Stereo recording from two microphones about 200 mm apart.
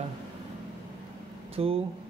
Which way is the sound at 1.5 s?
30° right (ahead or behind).